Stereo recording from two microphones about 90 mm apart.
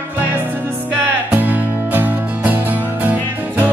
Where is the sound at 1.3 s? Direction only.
20° right (ahead or behind).